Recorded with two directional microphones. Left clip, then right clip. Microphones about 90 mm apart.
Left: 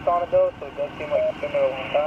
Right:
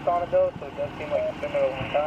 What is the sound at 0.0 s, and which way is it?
Speech, 30° left (ahead or behind).